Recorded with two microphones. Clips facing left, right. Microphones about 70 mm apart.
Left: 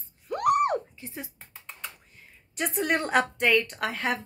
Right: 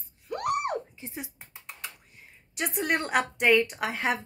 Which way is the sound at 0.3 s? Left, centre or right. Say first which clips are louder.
Left 6 dB; centre.